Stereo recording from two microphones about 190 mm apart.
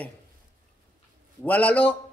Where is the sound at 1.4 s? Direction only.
5° left (ahead or behind).